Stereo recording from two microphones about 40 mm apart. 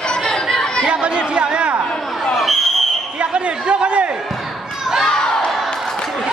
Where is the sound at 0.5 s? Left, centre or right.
Centre.